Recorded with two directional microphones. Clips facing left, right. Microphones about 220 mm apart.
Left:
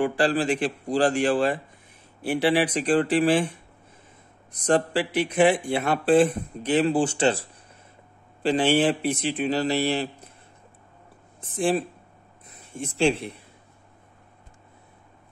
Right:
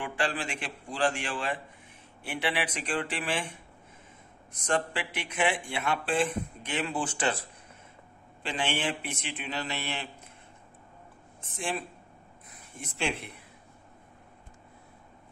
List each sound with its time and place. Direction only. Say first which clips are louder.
0.0 s speech: left 10 dB; 35° left (ahead or behind)
11.5 s speech: left 11 dB; 35° left (ahead or behind)